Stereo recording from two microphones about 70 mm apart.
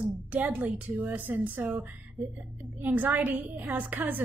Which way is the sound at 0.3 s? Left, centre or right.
Right.